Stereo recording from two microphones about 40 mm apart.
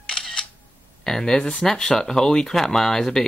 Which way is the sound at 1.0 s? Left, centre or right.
Centre.